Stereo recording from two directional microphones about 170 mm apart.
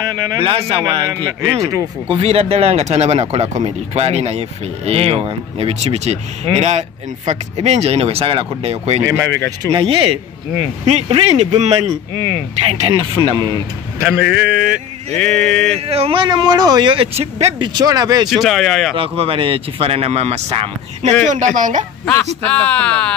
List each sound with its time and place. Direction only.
0.0 s a man's voice: 25° right (ahead or behind)
2.1 s a man's voice: 35° right (ahead or behind)
14.0 s speech: 5° right (ahead or behind)
15.1 s speech: 5° left (ahead or behind)
15.7 s speech: 35° right (ahead or behind)
17.7 s a man's voice: 20° right (ahead or behind)
18.3 s speech: centre (ahead or behind)
18.9 s speech: 35° right (ahead or behind)
22.5 s speech: 5° left (ahead or behind)